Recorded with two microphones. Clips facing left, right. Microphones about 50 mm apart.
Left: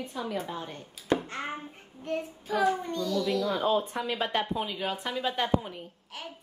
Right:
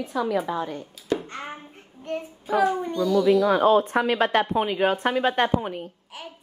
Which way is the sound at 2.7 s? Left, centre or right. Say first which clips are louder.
Right 5 dB; centre.